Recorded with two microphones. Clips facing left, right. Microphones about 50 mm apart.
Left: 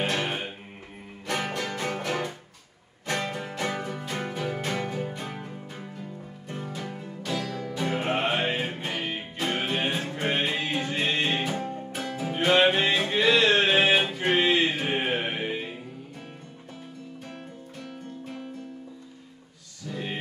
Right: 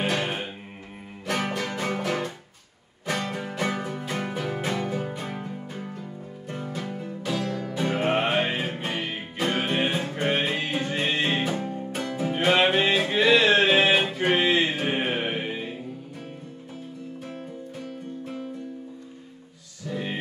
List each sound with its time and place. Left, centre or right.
0.0 s music: centre
9.5 s music: right
10.2 s music: centre
11.9 s music: centre
19.9 s music: centre